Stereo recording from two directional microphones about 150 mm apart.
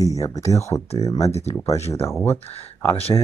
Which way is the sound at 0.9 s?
40° left (ahead or behind).